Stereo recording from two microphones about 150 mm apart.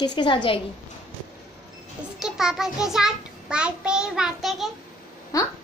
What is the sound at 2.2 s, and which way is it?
A child's voice, 5° right (ahead or behind).